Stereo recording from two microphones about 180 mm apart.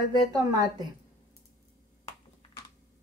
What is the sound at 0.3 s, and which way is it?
Speech, 20° right (ahead or behind).